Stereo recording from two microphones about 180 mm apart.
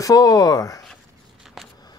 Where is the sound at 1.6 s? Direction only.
Centre (ahead or behind).